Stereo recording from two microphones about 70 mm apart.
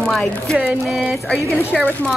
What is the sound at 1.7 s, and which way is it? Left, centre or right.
Speech, centre.